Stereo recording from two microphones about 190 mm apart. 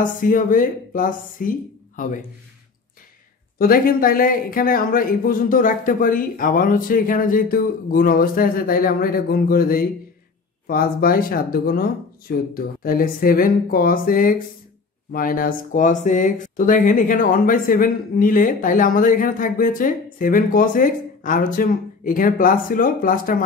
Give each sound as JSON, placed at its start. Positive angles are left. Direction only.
{"t": 0.0, "sound": "speech", "side_deg": 45}
{"t": 3.5, "sound": "speech", "side_deg": 50}